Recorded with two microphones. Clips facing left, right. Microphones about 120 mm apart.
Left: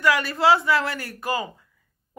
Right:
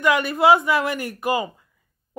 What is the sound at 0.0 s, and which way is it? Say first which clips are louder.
Speech: right 2 dB; 20° right (ahead or behind).